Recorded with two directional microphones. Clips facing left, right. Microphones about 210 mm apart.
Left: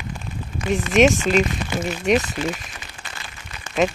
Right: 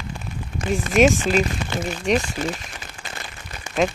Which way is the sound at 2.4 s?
45° right (ahead or behind).